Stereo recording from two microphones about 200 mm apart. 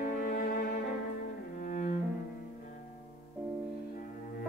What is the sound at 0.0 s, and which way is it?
Cello, 45° left (ahead or behind).